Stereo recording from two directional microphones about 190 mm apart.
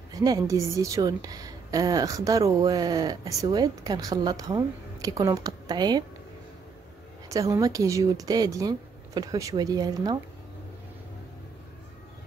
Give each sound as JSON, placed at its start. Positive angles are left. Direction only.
{"t": 0.1, "sound": "a woman's voice", "side_deg": -20}
{"t": 7.2, "sound": "a woman's voice", "side_deg": -15}